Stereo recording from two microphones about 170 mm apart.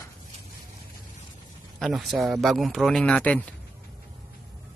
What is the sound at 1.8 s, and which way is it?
Speech, centre (ahead or behind).